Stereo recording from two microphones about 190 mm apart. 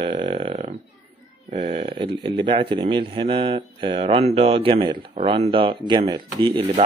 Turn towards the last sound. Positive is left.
turn(degrees=-25)  # may be behind; listen again after turning